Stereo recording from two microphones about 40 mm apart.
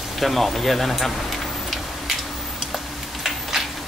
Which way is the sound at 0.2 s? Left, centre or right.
Centre.